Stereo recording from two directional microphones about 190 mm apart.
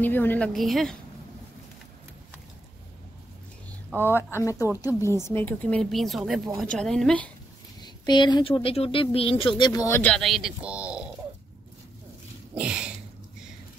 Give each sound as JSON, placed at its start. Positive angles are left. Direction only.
{"t": 0.0, "sound": "speech", "side_deg": 10}
{"t": 4.4, "sound": "a woman's voice", "side_deg": 15}
{"t": 7.8, "sound": "speech", "side_deg": 20}
{"t": 9.6, "sound": "a woman's voice", "side_deg": 20}
{"t": 10.1, "sound": "speech", "side_deg": 0}
{"t": 12.5, "sound": "a sound", "side_deg": -5}